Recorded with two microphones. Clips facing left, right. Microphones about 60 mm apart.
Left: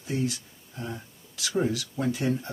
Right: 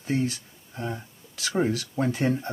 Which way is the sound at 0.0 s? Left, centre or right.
Right.